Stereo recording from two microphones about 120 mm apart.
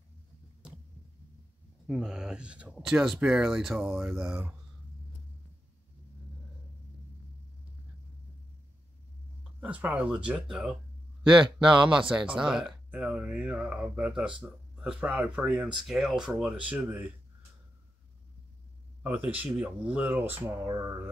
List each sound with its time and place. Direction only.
0.6 s heart sounds: 10° right (ahead or behind)
1.9 s speech: 5° right (ahead or behind)
9.4 s speech: 10° right (ahead or behind)
11.6 s speech: 40° right (ahead or behind)
12.1 s speech: 10° right (ahead or behind)
15.8 s speech: centre (ahead or behind)
19.0 s speech: 15° right (ahead or behind)